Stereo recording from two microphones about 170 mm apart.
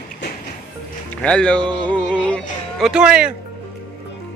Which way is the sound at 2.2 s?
5° left (ahead or behind).